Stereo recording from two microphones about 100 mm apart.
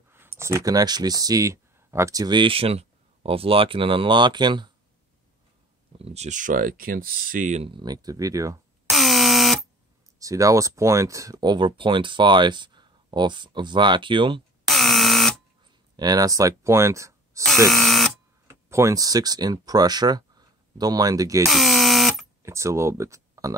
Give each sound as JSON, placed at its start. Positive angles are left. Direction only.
{"t": 0.1, "sound": "speech", "side_deg": -25}
{"t": 2.2, "sound": "speech", "side_deg": -55}
{"t": 5.9, "sound": "speech", "side_deg": -85}
{"t": 7.8, "sound": "speech", "side_deg": -40}
{"t": 8.9, "sound": "buzzer", "side_deg": 0}
{"t": 10.1, "sound": "speech", "side_deg": -35}
{"t": 11.4, "sound": "speech", "side_deg": -50}
{"t": 14.7, "sound": "buzzer", "side_deg": 0}
{"t": 16.0, "sound": "speech", "side_deg": -40}
{"t": 17.6, "sound": "electric shaver", "side_deg": 0}
{"t": 18.5, "sound": "speech", "side_deg": -30}
{"t": 21.5, "sound": "buzzer", "side_deg": 0}
{"t": 22.4, "sound": "speech", "side_deg": -30}